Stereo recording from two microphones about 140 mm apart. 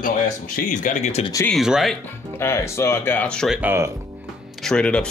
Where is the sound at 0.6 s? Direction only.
70° left (ahead or behind).